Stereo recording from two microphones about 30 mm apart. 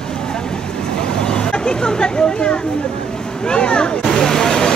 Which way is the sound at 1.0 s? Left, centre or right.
Left.